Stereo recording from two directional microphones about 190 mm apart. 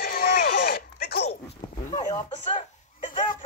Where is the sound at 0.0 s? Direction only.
55° left (ahead or behind).